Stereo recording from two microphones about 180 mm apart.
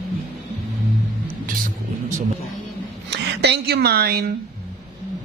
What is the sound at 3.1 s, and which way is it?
Speech, 70° right (ahead or behind).